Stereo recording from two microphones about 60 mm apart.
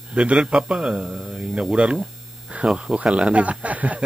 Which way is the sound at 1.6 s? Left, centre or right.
Centre.